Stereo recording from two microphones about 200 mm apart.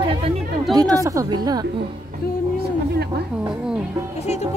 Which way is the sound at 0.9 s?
15° right (ahead or behind).